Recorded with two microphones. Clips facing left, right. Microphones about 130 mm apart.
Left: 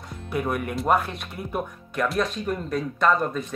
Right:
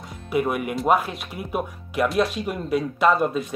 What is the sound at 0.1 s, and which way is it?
Speech, 5° right (ahead or behind).